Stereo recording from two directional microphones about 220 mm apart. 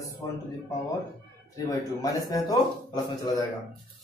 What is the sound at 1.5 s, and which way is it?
Speech, 15° left (ahead or behind).